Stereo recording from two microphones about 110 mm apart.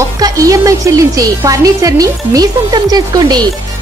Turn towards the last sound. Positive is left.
turn(degrees=-35)  # may be behind; listen again after turning